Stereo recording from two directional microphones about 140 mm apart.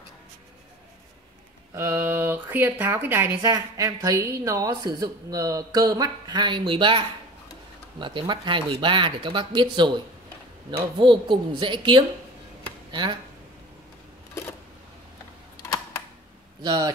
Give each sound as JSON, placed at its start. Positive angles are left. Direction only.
{"t": 1.8, "sound": "a woman's voice", "side_deg": -15}
{"t": 11.0, "sound": "speech", "side_deg": -35}
{"t": 12.6, "sound": "a sound", "side_deg": -35}
{"t": 16.6, "sound": "speech", "side_deg": -30}